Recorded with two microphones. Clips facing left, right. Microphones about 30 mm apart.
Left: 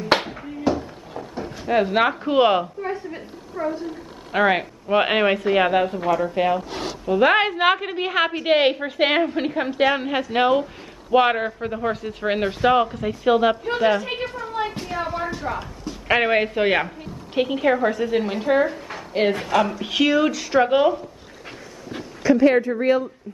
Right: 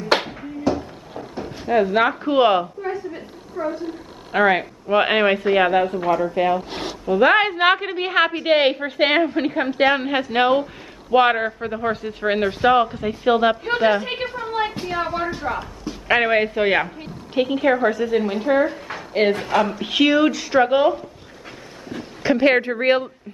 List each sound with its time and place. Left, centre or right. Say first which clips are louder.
0.2 s music: even; centre
1.1 s a sound: even; centre
1.7 s speech: right 1 dB; centre
2.8 s a sound: right 1 dB; centre
3.6 s speech: even; left
4.3 s speech: right 2 dB; centre
7.5 s a woman's voice: right 2 dB; centre
14.0 s a sound: right 1 dB; right
15.2 s a woman's voice: right 2 dB; centre
22.2 s speech: left 1 dB; right